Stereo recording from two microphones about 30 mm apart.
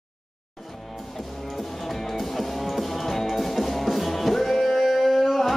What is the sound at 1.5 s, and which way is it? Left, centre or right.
Music, centre.